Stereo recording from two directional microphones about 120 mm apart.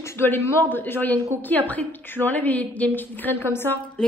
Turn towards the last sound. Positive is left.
turn(degrees=15)  # may be behind; listen again after turning